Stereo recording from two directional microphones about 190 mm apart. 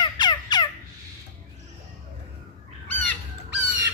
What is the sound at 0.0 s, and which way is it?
Turkey, 20° left (ahead or behind).